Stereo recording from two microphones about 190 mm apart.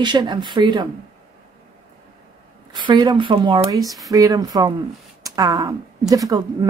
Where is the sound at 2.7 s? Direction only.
25° right (ahead or behind).